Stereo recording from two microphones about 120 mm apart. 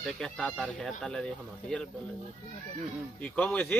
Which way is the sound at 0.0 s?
5° left (ahead or behind).